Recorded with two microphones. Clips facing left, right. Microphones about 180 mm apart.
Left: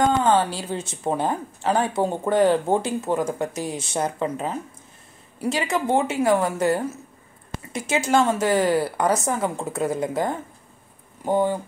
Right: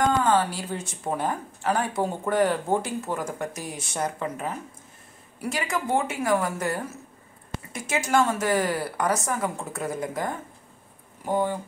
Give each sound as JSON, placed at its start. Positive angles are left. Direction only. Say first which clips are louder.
{"t": 0.3, "sound": "speech", "louder": "left 3 dB", "side_deg": 25}